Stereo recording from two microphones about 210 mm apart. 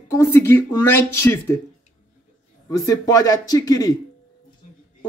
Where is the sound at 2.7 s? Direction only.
15° left (ahead or behind).